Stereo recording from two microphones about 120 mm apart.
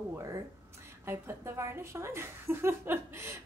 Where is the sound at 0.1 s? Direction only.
25° right (ahead or behind).